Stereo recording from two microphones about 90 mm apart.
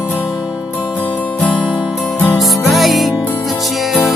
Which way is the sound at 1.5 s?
65° left (ahead or behind).